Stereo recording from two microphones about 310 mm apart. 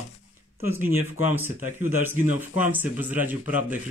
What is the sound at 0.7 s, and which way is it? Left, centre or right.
Speech, centre.